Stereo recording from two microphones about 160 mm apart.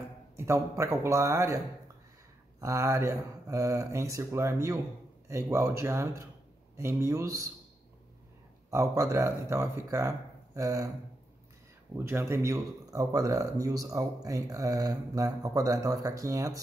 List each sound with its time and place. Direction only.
0.4 s a man's voice: 15° right (ahead or behind)
2.6 s a man's voice: 20° right (ahead or behind)
8.6 s speech: 20° right (ahead or behind)
12.0 s speech: 15° right (ahead or behind)